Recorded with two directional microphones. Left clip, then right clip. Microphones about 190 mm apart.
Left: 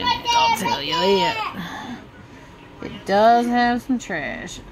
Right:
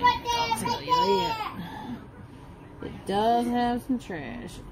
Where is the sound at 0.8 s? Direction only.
35° left (ahead or behind).